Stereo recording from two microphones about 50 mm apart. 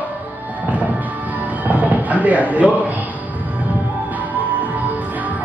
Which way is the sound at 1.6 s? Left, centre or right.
Right.